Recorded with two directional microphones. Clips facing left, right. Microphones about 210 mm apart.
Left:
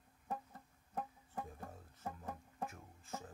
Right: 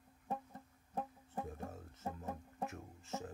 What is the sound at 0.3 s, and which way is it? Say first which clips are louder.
Music: right 2 dB; 25° right (ahead or behind).